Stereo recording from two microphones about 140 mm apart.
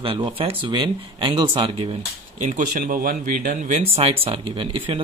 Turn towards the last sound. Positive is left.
turn(degrees=-40)  # may be behind; listen again after turning